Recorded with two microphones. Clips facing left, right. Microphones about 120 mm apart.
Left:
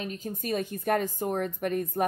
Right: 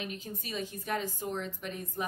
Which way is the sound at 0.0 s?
40° left (ahead or behind).